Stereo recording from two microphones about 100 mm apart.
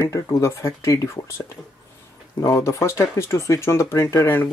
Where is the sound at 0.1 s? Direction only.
30° left (ahead or behind).